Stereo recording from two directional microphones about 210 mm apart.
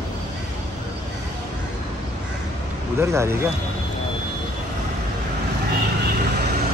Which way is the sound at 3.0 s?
15° right (ahead or behind).